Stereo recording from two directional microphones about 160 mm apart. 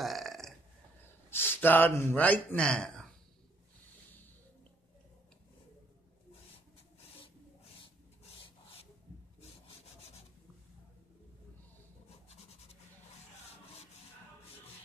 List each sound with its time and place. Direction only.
0.0 s burping: centre (ahead or behind)
1.3 s speech: 15° left (ahead or behind)
12.1 s a sound: 40° left (ahead or behind)